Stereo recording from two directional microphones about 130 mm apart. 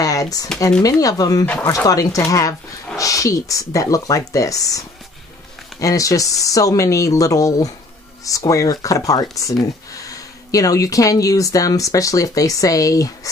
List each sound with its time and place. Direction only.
0.0 s a sound: 25° left (ahead or behind)
0.8 s speech: 25° left (ahead or behind)
1.4 s speech: 15° left (ahead or behind)
1.7 s speech: 25° left (ahead or behind)